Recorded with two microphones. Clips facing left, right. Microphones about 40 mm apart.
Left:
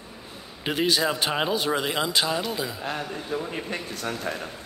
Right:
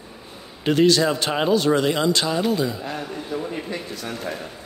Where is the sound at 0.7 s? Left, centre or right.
Centre.